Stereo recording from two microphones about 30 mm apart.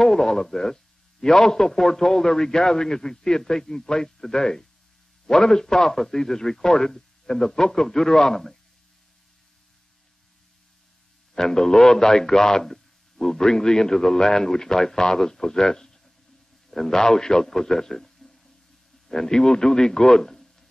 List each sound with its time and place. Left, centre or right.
0.0 s a man's voice: left
11.3 s speech: centre
12.7 s a sound: centre
13.4 s a man's voice: left
17.9 s a sound: centre
19.0 s a man's voice: centre